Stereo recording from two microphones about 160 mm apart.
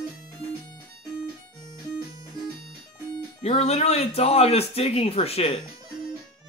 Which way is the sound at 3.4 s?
40° left (ahead or behind).